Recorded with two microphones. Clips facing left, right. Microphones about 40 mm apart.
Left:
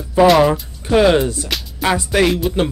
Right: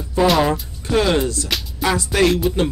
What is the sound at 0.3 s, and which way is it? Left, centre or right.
Speech, centre.